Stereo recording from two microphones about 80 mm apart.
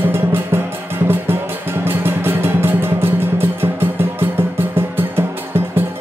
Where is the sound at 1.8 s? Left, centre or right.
Right.